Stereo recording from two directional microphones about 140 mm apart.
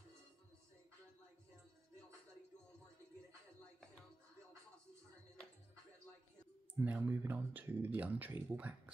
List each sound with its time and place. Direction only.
6.7 s speech: 10° right (ahead or behind)